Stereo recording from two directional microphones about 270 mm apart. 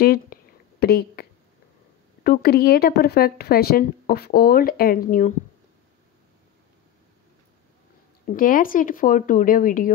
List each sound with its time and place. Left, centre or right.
0.0 s a sound: left
2.2 s speech: left
8.3 s speech: left